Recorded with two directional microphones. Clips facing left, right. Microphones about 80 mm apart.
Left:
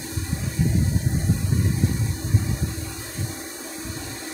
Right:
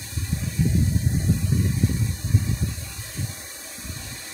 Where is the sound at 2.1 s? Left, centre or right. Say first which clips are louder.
Left 1 dB; left.